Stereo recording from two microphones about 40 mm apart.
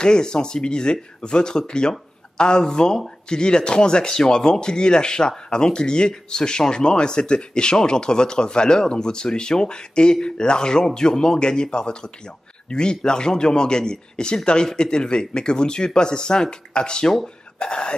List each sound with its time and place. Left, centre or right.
0.0 s speech: centre